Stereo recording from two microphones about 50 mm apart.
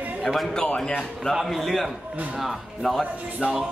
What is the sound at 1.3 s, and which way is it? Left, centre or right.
A woman's voice, centre.